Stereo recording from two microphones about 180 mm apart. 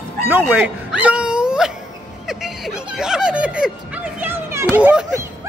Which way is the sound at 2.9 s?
5° right (ahead or behind).